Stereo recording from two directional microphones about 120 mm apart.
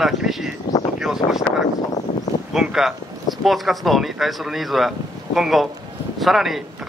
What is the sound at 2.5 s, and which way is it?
Speech, 5° right (ahead or behind).